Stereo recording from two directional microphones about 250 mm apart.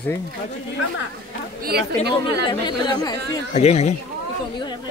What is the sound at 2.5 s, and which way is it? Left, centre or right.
A man's voice, centre.